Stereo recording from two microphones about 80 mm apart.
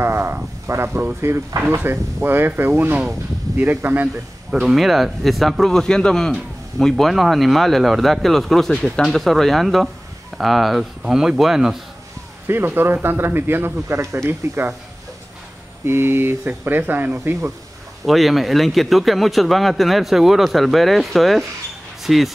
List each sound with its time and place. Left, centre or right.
0.0 s a sound: right
0.7 s speech: right
4.5 s speech: centre
12.4 s speech: right
15.8 s speech: right
18.0 s speech: centre